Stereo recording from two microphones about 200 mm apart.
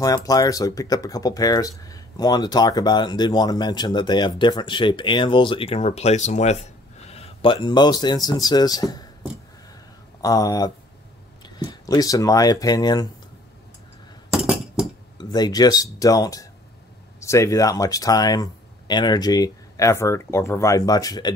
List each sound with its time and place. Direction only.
0.0 s speech: 15° left (ahead or behind)
10.2 s speech: 20° left (ahead or behind)
14.3 s chink: centre (ahead or behind)
15.1 s speech: 20° left (ahead or behind)